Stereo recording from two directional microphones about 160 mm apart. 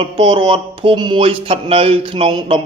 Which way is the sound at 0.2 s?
30° right (ahead or behind).